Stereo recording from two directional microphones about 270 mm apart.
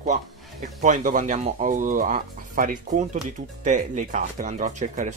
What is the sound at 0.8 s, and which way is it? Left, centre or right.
Speech, right.